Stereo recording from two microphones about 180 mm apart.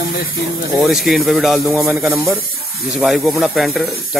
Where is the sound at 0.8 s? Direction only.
Centre (ahead or behind).